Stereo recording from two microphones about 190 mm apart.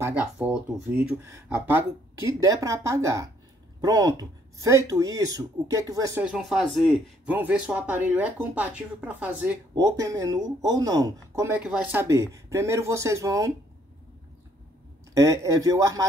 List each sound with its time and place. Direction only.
0.0 s speech: 10° right (ahead or behind)
6.2 s speech: 5° right (ahead or behind)
15.1 s speech: 15° right (ahead or behind)